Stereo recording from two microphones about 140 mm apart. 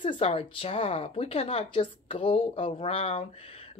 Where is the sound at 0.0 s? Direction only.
40° left (ahead or behind).